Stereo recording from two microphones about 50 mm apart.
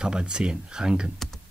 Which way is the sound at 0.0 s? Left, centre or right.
Centre.